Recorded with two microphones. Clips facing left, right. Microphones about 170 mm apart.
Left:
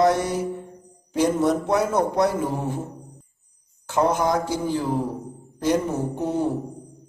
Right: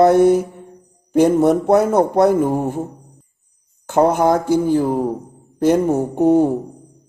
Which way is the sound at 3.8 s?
55° right (ahead or behind).